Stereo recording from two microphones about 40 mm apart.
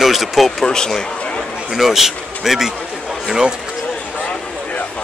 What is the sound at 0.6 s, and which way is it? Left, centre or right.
Speech, centre.